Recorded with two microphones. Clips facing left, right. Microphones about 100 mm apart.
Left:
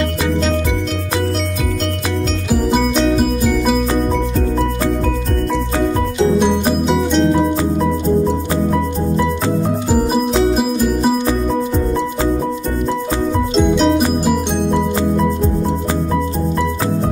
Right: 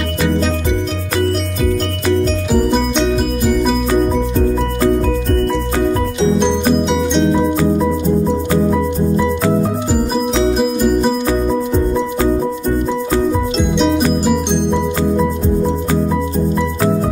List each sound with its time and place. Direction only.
2.5 s music: 5° left (ahead or behind)
6.9 s music: centre (ahead or behind)
10.5 s music: centre (ahead or behind)
13.6 s music: centre (ahead or behind)